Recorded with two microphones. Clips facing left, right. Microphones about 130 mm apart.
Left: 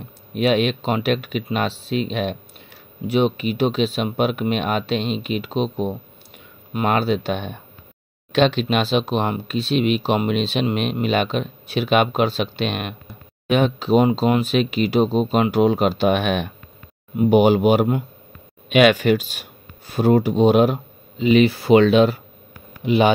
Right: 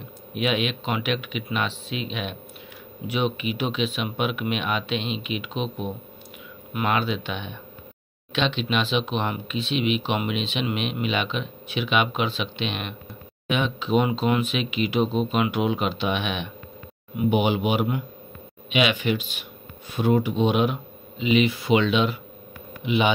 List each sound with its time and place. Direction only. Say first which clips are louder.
0.3 s speech: left 6 dB; 40° left (ahead or behind)